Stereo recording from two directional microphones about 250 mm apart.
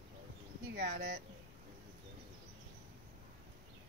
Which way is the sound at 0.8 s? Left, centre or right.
Right.